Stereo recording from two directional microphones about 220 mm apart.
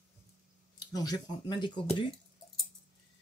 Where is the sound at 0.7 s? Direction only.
15° left (ahead or behind).